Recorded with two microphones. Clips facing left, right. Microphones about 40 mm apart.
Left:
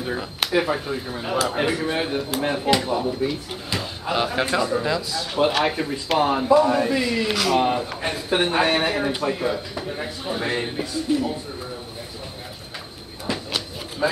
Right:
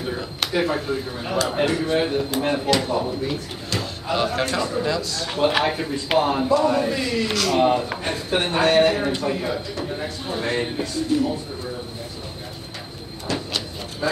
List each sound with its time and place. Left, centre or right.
0.1 s speech: centre
3.7 s speech: centre
5.5 s speech: centre
6.1 s speech: centre
10.3 s speech: centre
11.1 s speech: centre
13.3 s a sound: centre